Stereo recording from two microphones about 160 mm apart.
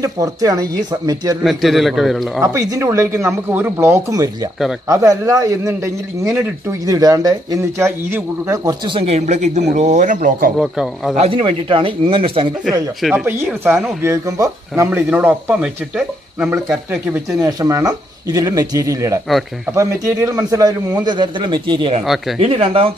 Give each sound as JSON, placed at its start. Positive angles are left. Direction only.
{"t": 0.0, "sound": "a man's voice", "side_deg": -20}
{"t": 1.4, "sound": "a man's voice", "side_deg": 0}
{"t": 2.4, "sound": "a man's voice", "side_deg": -20}
{"t": 6.9, "sound": "a man's voice", "side_deg": -25}
{"t": 8.8, "sound": "speech", "side_deg": -35}
{"t": 10.6, "sound": "a man's voice", "side_deg": -5}
{"t": 11.1, "sound": "a man's voice", "side_deg": -35}
{"t": 13.1, "sound": "speech", "side_deg": -15}
{"t": 13.5, "sound": "a man's voice", "side_deg": 0}
{"t": 14.0, "sound": "a man's voice", "side_deg": -20}
{"t": 17.4, "sound": "a man's voice", "side_deg": -25}